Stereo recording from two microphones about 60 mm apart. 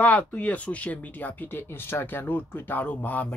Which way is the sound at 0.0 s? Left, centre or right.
Left.